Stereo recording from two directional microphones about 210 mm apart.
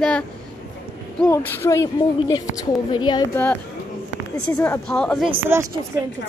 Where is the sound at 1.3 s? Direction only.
15° left (ahead or behind).